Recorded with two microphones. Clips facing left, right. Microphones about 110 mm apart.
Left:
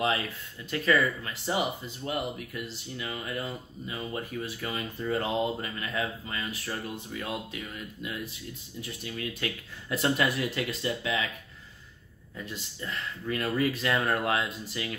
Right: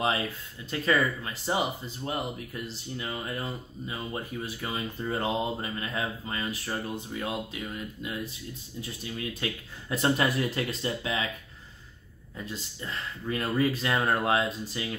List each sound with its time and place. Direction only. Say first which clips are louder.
0.7 s speech: left 1 dB; 25° right (ahead or behind)
12.4 s speech: even; 25° right (ahead or behind)